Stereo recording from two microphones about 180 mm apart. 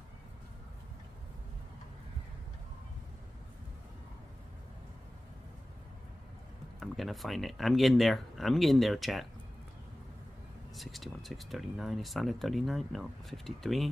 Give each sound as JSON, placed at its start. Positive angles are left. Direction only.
{"t": 6.8, "sound": "speech", "side_deg": 0}
{"t": 10.8, "sound": "speech", "side_deg": 0}